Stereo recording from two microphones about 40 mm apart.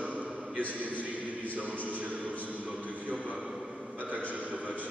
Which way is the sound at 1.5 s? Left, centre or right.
Right.